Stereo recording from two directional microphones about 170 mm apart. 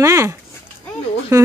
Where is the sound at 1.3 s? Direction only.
20° right (ahead or behind).